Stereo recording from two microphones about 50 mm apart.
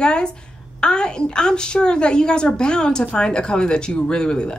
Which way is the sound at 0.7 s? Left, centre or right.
Centre.